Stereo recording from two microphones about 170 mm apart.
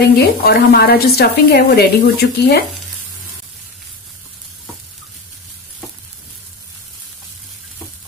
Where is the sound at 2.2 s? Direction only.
90° left.